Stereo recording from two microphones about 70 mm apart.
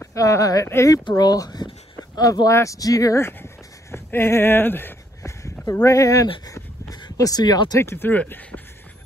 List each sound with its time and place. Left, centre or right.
0.1 s speech: left
2.5 s speech: left
3.2 s speech: left
5.7 s speech: left
7.8 s speech: left
8.1 s speech: left